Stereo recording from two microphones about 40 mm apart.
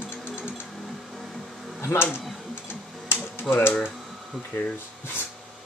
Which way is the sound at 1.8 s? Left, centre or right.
Left.